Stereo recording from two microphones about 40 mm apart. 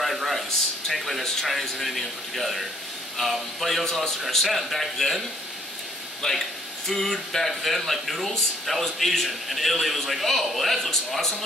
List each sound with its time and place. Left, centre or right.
0.0 s a man's voice: centre
6.2 s speech: centre